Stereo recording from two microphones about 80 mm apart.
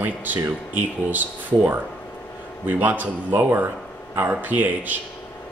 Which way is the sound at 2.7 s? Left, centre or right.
Right.